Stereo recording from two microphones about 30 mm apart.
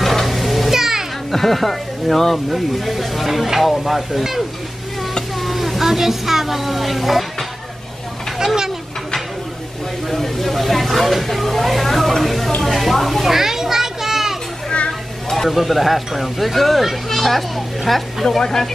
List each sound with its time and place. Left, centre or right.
0.0 s a sound: centre
0.7 s music: centre
1.3 s speech: centre
5.4 s speech: centre
8.4 s speech: centre
10.0 s speech: centre
13.2 s children playing: centre
15.4 s speech: centre